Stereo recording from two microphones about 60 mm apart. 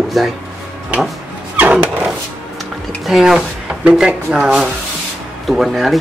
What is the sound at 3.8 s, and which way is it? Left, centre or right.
Speech, centre.